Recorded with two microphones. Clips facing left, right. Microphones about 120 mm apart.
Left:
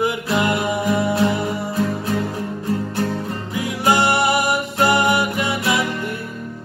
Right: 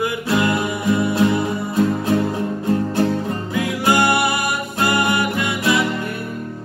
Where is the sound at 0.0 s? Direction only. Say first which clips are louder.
Even; 20° left (ahead or behind).